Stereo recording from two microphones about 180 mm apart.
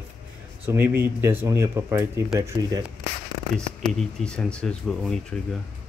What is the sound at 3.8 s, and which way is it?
Speech, 5° left (ahead or behind).